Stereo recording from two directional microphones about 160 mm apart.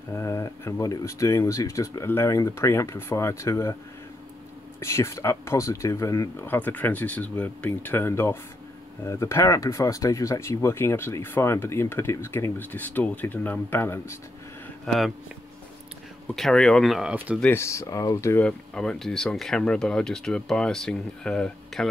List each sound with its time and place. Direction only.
0.1 s speech: 15° left (ahead or behind)
4.7 s speech: 20° left (ahead or behind)
14.9 s speech: centre (ahead or behind)
16.3 s speech: centre (ahead or behind)
17.4 s speech: 15° left (ahead or behind)
18.4 s speech: 5° left (ahead or behind)